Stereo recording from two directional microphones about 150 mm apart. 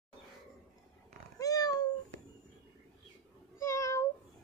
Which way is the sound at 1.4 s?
25° left (ahead or behind).